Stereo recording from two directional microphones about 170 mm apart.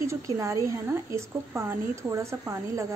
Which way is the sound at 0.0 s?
20° right (ahead or behind).